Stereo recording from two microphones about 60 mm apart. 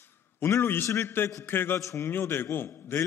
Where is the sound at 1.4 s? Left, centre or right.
Left.